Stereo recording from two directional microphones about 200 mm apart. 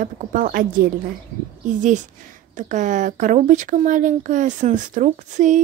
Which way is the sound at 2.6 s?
40° right (ahead or behind).